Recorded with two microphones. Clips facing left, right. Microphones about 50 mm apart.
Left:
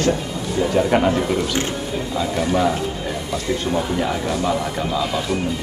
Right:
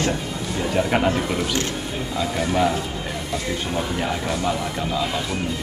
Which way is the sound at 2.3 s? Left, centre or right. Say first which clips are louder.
Left 2 dB; centre.